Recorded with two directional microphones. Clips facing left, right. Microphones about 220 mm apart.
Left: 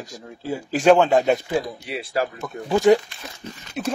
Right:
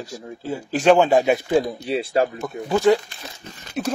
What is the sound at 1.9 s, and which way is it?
Speech, 25° right (ahead or behind).